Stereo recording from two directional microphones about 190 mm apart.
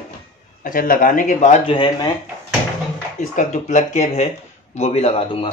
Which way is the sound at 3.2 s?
40° left (ahead or behind).